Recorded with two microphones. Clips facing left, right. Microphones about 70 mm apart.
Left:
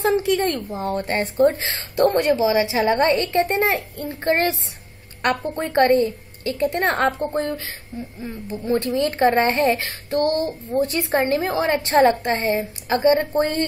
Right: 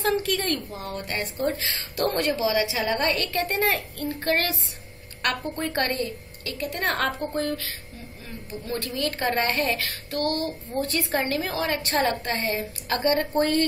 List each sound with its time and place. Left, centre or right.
0.0 s a woman's voice: left